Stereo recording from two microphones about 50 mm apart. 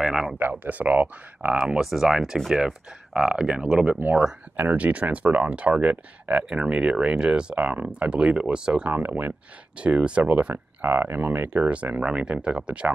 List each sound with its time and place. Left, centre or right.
0.0 s speech: centre
0.7 s speech: right
1.8 s speech: centre; by 6.4 s right
6.5 s speech: centre
8.9 s speech: right
9.8 s speech: right
10.2 s speech: right
11.7 s speech: right